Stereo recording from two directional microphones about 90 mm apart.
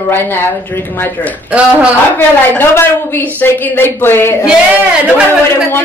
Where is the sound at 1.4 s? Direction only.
15° right (ahead or behind).